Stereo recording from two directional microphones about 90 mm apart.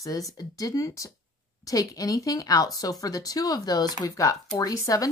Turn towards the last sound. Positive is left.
turn(degrees=40)  # may be behind; listen again after turning